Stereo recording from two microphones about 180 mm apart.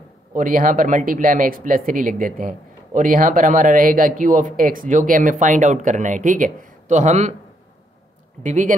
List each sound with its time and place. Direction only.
0.3 s speech: 50° right (ahead or behind)
8.4 s speech: 45° right (ahead or behind)